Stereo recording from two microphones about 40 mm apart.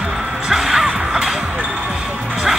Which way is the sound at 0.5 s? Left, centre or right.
Centre.